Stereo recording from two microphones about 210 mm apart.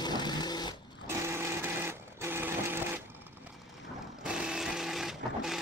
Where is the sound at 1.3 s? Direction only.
10° right (ahead or behind).